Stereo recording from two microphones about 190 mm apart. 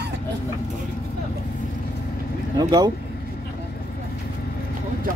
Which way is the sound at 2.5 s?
20° right (ahead or behind).